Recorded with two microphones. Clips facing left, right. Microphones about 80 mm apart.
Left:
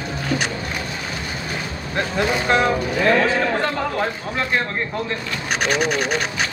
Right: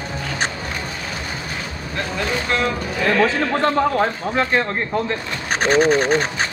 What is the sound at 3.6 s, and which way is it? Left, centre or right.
Speech, right.